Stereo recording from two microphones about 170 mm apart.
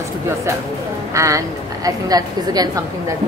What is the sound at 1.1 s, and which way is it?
A woman's voice, 20° right (ahead or behind).